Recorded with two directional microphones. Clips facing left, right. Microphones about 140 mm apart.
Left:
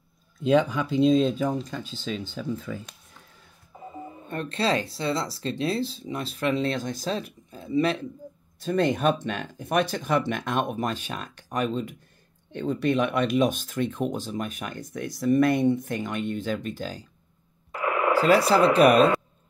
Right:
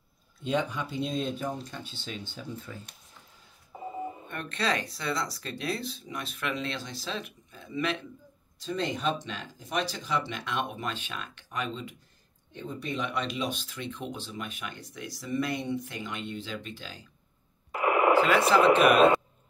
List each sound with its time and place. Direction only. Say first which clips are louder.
0.4 s speech: left 8 dB; 90° left
4.3 s speech: left 6 dB; 30° left (ahead or behind)
8.5 s speech: left 8 dB; 55° left (ahead or behind)
12.5 s speech: left 11 dB; 75° left (ahead or behind); by 17.1 s 40° left (ahead or behind)
17.7 s radio: right 1 dB; 20° right (ahead or behind)
18.1 s speech: left 5 dB; 35° left (ahead or behind)